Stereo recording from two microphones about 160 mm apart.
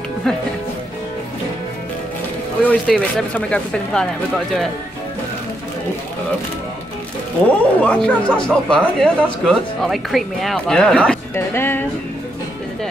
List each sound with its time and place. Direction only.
2.6 s speech: 10° left (ahead or behind)
7.4 s speech: 10° left (ahead or behind)